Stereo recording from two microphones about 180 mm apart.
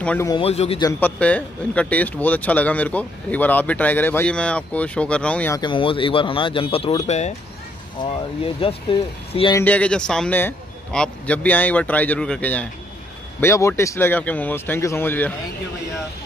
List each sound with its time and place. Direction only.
0.0 s a man's voice: 5° left (ahead or behind)
0.3 s a man's voice: 35° left (ahead or behind)
0.7 s speech: 15° left (ahead or behind)
5.6 s speech: 30° left (ahead or behind)
8.0 s a man's voice: 25° left (ahead or behind)
9.6 s speech: 10° left (ahead or behind)